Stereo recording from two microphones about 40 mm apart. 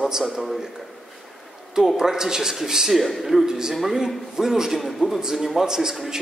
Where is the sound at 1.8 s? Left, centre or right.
Centre.